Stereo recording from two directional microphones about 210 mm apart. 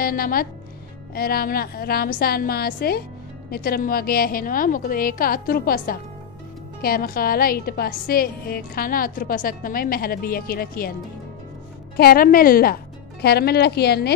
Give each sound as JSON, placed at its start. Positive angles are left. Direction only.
{"t": 0.0, "sound": "a woman's voice", "side_deg": 45}
{"t": 12.0, "sound": "a woman's voice", "side_deg": 45}